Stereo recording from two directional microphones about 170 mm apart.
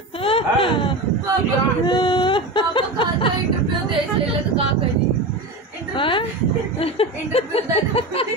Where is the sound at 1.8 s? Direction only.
25° left (ahead or behind).